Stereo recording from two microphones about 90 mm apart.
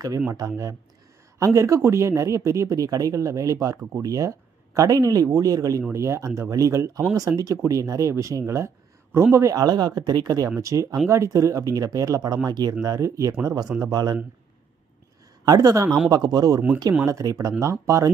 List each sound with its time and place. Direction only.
1.4 s speech: 35° right (ahead or behind)
9.6 s speech: 45° right (ahead or behind)
12.8 s speech: 35° right (ahead or behind)
15.4 s speech: 45° right (ahead or behind)